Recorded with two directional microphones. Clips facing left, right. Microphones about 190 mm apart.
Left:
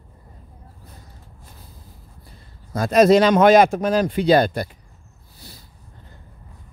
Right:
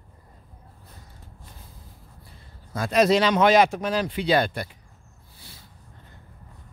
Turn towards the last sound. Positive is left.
turn(degrees=40)  # may be behind; listen again after turning